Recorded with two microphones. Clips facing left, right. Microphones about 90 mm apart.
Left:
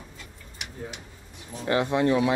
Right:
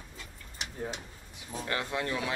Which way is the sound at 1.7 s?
20° left (ahead or behind).